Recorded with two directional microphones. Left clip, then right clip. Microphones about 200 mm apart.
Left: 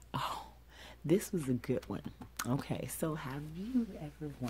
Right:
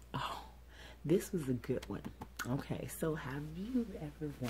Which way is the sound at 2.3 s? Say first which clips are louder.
Left 3 dB; 35° left (ahead or behind).